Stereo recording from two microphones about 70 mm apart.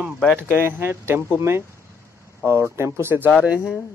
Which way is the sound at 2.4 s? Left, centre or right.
Right.